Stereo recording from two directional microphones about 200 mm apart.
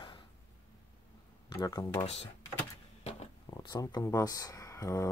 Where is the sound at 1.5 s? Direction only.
20° left (ahead or behind).